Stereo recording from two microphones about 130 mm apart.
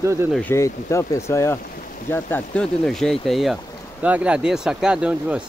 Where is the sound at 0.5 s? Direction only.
20° left (ahead or behind); by 3.5 s centre (ahead or behind).